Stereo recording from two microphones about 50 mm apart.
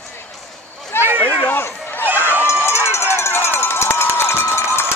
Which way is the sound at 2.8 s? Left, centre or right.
Left.